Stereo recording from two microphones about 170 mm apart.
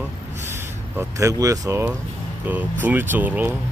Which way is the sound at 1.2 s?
20° right (ahead or behind).